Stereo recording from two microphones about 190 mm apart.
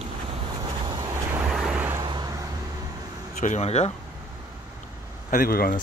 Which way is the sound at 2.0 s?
25° right (ahead or behind).